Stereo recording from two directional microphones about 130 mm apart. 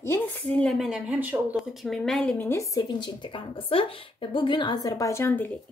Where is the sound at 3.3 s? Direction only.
40° left (ahead or behind); by 5.5 s 15° left (ahead or behind).